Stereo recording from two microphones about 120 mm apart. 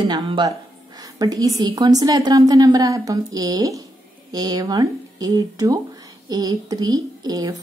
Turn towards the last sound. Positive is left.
turn(degrees=-30)  # may be behind; listen again after turning